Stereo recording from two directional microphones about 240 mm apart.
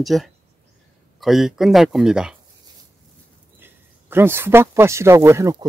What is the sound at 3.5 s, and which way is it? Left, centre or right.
Speech, centre.